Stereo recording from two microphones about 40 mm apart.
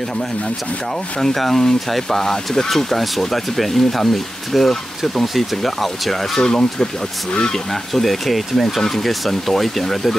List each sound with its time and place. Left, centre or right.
1.2 s speech: centre
6.4 s speech: centre
7.5 s speech: centre